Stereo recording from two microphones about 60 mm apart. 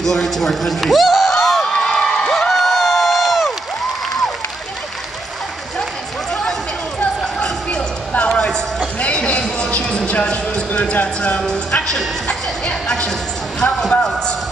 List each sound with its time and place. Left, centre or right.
0.0 s a man's voice: centre
1.4 s crowd: centre
7.3 s a sound: centre
10.7 s speech: left
11.3 s speech: centre
12.6 s a sound: centre